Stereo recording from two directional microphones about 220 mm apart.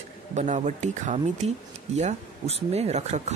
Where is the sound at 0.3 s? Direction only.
30° right (ahead or behind).